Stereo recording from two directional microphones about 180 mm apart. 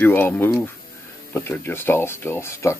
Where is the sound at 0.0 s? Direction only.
10° left (ahead or behind).